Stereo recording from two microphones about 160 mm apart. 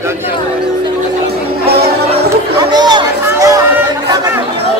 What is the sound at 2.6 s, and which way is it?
Speech, 25° right (ahead or behind).